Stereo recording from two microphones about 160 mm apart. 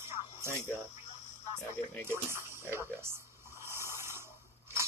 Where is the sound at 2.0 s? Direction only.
15° right (ahead or behind).